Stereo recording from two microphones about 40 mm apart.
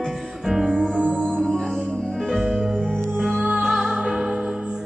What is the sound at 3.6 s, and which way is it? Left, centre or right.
Music, centre.